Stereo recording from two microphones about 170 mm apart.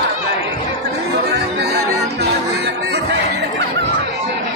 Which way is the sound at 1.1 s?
75° right (ahead or behind).